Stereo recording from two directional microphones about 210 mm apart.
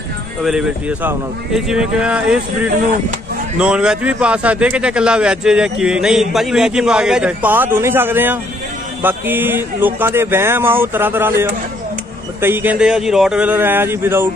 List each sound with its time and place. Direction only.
0.4 s a man's voice: centre (ahead or behind)
3.5 s a man's voice: 5° right (ahead or behind)